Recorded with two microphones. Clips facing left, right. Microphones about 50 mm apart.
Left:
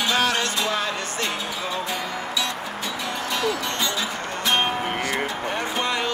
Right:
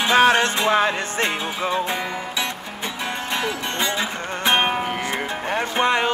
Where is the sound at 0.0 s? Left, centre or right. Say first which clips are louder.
Right 6 dB; right.